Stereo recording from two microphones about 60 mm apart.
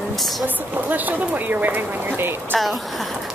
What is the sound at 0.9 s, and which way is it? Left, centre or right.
Speech, right.